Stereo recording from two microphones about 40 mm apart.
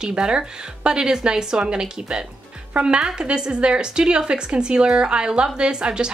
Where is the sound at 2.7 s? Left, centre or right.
Right.